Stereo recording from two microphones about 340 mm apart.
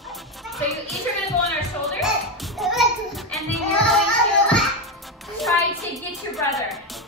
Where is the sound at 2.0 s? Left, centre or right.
Centre.